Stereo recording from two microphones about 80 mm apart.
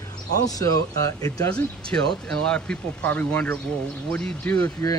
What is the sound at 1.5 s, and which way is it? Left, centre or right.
Speech, centre.